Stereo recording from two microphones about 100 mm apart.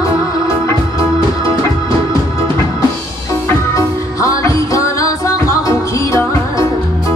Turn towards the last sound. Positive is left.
turn(degrees=30)  # may be behind; listen again after turning